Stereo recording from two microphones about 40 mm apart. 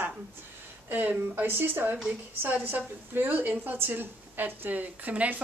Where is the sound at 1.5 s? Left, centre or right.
Right.